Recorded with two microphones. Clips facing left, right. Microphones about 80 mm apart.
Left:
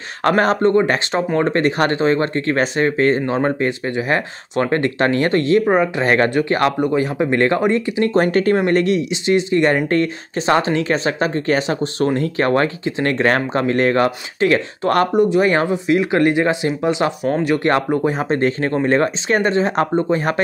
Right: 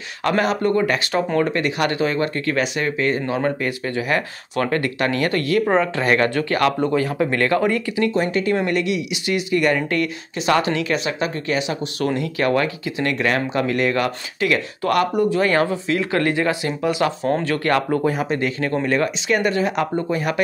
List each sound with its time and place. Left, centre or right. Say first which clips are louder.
0.2 s speech: left 4 dB; left
0.6 s speech: left 4 dB; left
5.7 s speech: left 3 dB; centre
6.0 s speech: left 3 dB; left
8.0 s speech: left 4 dB; left
17.3 s speech: left 2 dB; centre
17.6 s speech: left 2 dB; left
18.3 s speech: left 4 dB; left